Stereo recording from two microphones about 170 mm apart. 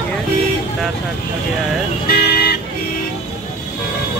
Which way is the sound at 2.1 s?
65° left (ahead or behind).